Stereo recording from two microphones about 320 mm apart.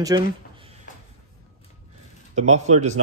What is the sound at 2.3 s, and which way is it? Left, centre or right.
Speech, right.